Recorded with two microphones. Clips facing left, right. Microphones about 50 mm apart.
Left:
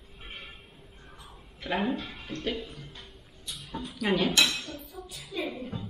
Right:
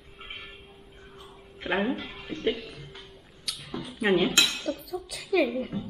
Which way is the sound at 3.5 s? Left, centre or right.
Right.